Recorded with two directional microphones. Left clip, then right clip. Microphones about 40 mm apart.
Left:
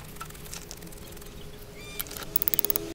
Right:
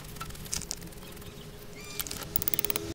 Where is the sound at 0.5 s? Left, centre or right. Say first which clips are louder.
Right 7 dB; right.